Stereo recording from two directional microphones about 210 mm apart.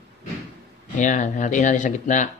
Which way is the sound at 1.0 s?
35° left (ahead or behind).